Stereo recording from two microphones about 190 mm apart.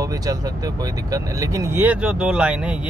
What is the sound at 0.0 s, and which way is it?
Speech, 20° right (ahead or behind).